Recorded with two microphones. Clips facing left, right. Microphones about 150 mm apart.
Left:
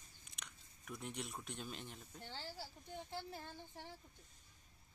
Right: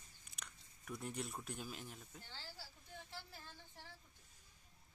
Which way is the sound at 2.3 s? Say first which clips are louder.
Left 9 dB; 25° left (ahead or behind).